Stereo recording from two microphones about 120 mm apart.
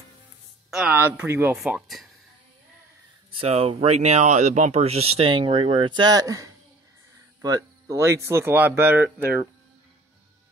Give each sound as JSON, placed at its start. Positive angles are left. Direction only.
{"t": 0.7, "sound": "a sound", "side_deg": -5}
{"t": 0.9, "sound": "speech", "side_deg": -20}
{"t": 1.5, "sound": "speech", "side_deg": -5}
{"t": 3.3, "sound": "speech", "side_deg": -55}